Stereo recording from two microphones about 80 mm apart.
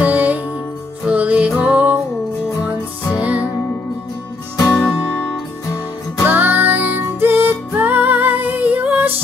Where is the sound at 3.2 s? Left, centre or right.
Centre.